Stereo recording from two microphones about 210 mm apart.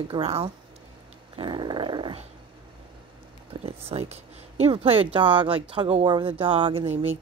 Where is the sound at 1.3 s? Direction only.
20° right (ahead or behind).